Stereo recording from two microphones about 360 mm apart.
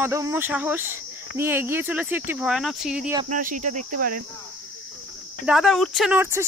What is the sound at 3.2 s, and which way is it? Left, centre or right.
Speech, right.